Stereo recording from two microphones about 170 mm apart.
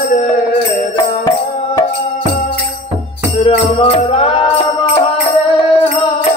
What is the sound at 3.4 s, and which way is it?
Music, 35° left (ahead or behind).